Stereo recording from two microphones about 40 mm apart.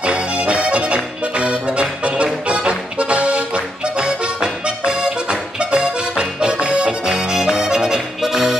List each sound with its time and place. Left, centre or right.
0.0 s accordion: right
2.4 s music: right; by 8.5 s centre